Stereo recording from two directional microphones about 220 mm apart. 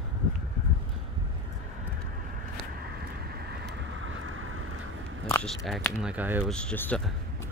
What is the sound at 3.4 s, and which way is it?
Vehicle, 55° right (ahead or behind).